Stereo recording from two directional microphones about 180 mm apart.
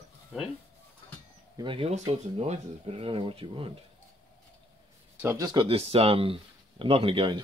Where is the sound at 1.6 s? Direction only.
30° right (ahead or behind).